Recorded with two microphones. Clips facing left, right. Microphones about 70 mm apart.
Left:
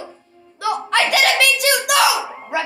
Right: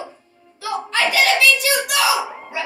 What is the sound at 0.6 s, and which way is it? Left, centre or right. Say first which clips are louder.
Music: left 4 dB; left.